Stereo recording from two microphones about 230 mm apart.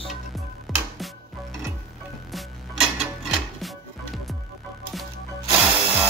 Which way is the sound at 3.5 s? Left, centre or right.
Centre.